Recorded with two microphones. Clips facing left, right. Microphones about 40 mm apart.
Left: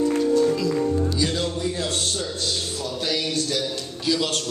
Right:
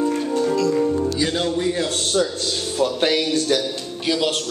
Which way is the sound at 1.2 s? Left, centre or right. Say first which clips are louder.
Right 3 dB; right.